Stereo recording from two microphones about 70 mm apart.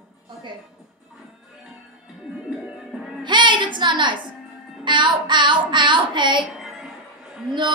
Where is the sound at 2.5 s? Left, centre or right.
Centre.